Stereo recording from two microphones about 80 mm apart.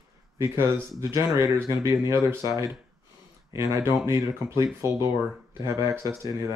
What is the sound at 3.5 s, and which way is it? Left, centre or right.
Speech, right.